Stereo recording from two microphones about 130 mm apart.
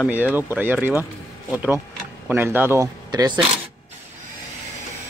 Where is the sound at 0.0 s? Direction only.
15° right (ahead or behind).